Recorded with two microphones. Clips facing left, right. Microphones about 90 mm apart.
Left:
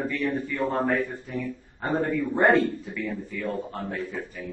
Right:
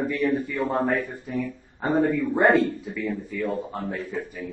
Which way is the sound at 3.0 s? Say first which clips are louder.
Right 3 dB; centre (ahead or behind).